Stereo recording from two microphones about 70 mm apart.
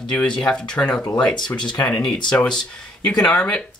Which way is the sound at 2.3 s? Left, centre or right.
Centre.